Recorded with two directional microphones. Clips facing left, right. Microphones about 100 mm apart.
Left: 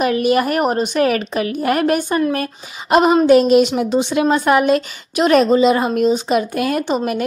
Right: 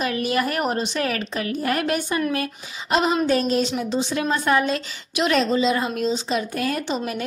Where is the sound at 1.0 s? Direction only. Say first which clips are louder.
Left 8 dB; 15° left (ahead or behind).